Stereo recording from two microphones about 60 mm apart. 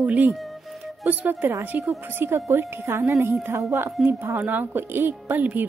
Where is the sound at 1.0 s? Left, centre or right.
Right.